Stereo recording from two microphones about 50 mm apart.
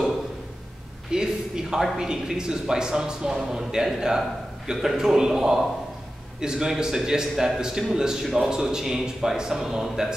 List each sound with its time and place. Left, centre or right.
1.1 s a man's voice: centre